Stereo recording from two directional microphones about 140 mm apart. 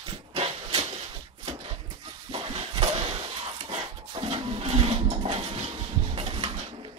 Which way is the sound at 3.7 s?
45° right (ahead or behind).